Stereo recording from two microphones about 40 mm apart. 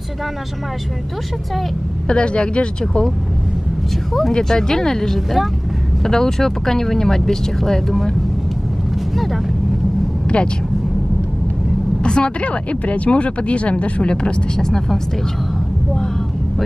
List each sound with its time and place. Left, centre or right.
2.0 s speech: left
4.3 s speech: centre
9.1 s vehicle: centre
10.2 s vehicle: left
12.0 s speech: left
14.6 s speech: centre